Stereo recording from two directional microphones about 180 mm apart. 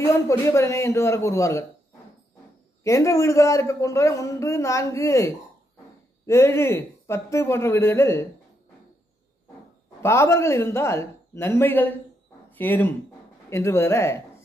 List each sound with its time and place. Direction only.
0.0 s a man's voice: 15° left (ahead or behind)
2.8 s a man's voice: 15° left (ahead or behind)
10.0 s a man's voice: 15° left (ahead or behind)